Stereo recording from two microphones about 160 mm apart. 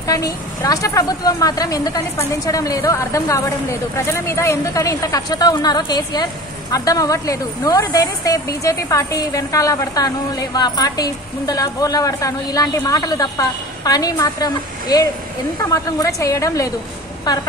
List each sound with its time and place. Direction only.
0.0 s a woman's voice: 20° left (ahead or behind)